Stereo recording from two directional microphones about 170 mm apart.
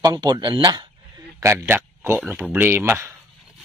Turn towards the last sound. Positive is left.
turn(degrees=-15)  # may be behind; listen again after turning